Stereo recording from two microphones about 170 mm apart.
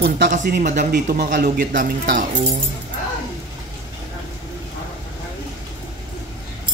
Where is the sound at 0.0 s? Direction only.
55° right (ahead or behind).